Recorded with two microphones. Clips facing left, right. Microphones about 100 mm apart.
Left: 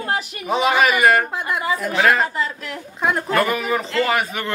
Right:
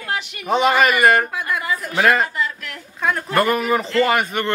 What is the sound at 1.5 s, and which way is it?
Speech, 25° left (ahead or behind).